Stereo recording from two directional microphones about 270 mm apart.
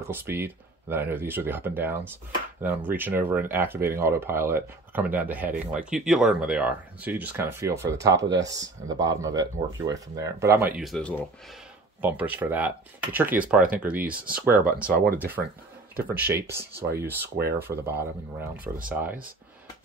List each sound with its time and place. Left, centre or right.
0.1 s speech: centre
10.8 s speech: centre
14.9 s speech: right
16.0 s speech: centre
17.4 s speech: right
17.6 s speech: centre
18.6 s speech: right